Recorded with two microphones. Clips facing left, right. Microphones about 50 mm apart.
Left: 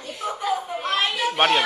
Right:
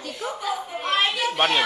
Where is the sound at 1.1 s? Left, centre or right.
Left.